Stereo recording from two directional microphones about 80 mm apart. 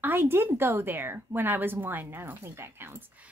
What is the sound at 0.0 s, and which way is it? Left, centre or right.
A woman's voice, right.